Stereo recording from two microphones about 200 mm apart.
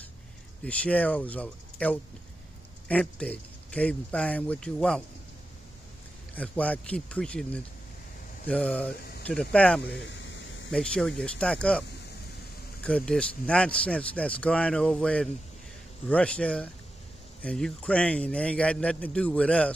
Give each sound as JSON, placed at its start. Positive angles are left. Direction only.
{"t": 0.7, "sound": "a man's voice", "side_deg": 5}
{"t": 6.3, "sound": "a man's voice", "side_deg": 5}
{"t": 9.8, "sound": "a sound", "side_deg": 60}
{"t": 10.7, "sound": "a man's voice", "side_deg": 5}
{"t": 12.8, "sound": "a man's voice", "side_deg": 5}